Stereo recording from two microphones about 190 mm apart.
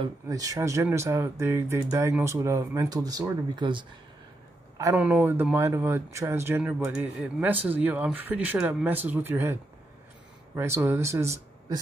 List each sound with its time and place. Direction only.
0.0 s speech: 20° right (ahead or behind)
4.7 s speech: 10° right (ahead or behind)